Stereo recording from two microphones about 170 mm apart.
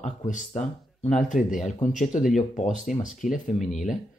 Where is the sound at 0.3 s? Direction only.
45° left (ahead or behind).